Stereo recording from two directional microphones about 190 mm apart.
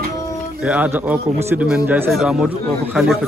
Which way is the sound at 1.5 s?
10° right (ahead or behind).